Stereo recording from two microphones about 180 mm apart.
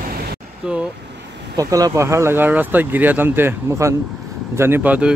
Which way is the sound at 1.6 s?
20° right (ahead or behind).